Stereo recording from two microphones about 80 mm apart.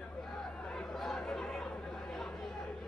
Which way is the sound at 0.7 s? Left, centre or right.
Centre.